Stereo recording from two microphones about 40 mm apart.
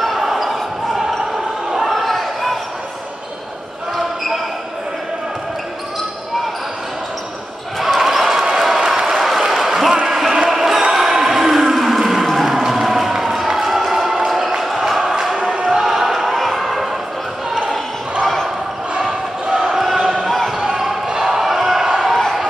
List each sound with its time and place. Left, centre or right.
0.0 s basketball bounce: centre
1.8 s basketball bounce: centre
7.8 s basketball bounce: centre
8.5 s a sound: centre
15.8 s a sound: centre
18.2 s basketball bounce: centre
19.6 s basketball bounce: centre
20.2 s basketball bounce: centre
20.5 s basketball bounce: centre
22.0 s basketball bounce: centre